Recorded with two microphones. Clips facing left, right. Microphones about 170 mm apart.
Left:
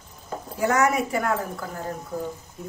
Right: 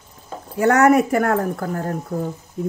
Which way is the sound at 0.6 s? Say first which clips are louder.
Right 8 dB; 60° right (ahead or behind).